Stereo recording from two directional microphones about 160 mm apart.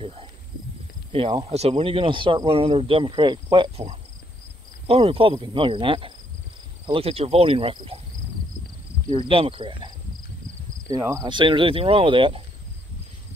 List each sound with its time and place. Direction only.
0.0 s snake: 35° right (ahead or behind)
1.1 s speech: 35° right (ahead or behind)
3.7 s speech: 45° right (ahead or behind)
9.1 s speech: 35° right (ahead or behind)
10.9 s speech: 20° right (ahead or behind)